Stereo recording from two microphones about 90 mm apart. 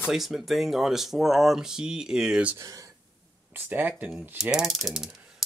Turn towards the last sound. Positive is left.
turn(degrees=-5)  # may be behind; listen again after turning